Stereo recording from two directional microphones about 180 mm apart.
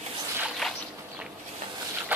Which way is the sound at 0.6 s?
Centre (ahead or behind).